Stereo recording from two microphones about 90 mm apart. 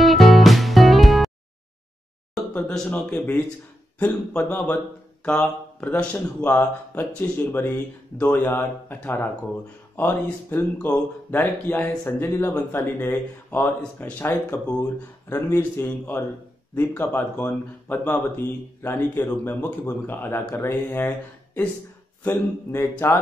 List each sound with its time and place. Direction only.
0.0 s music: centre (ahead or behind)
2.9 s speech: 15° left (ahead or behind)
22.2 s speech: 25° left (ahead or behind)